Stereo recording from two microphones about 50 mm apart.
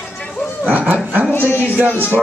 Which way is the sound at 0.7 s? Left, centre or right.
Right.